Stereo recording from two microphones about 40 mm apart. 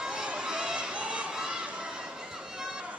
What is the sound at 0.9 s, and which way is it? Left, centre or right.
Crowd, right.